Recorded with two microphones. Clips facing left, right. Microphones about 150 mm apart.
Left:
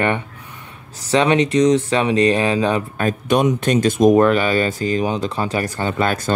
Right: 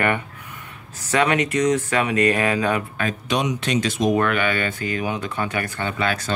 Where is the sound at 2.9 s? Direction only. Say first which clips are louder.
Left 6 dB; 50° left (ahead or behind).